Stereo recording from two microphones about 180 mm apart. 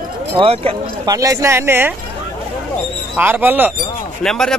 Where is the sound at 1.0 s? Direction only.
20° right (ahead or behind).